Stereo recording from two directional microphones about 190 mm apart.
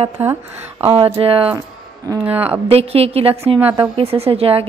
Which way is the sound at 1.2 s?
30° right (ahead or behind).